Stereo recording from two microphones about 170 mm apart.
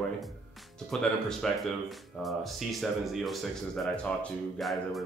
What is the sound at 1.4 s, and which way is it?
Speech, centre (ahead or behind).